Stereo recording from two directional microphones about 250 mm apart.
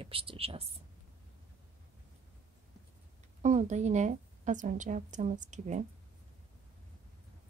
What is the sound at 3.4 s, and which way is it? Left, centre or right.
A woman's voice, right.